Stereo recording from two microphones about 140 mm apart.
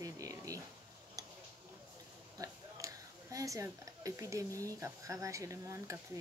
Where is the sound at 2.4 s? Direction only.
25° right (ahead or behind).